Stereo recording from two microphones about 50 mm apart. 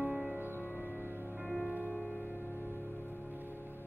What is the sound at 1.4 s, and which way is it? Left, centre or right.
Music, centre.